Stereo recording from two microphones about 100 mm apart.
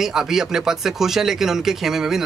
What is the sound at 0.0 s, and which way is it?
Speech, 5° right (ahead or behind).